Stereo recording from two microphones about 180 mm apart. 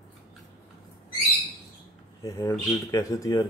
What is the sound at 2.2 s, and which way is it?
Speech, 20° left (ahead or behind).